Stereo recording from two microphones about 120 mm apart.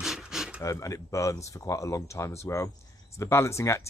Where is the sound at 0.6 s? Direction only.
25° left (ahead or behind).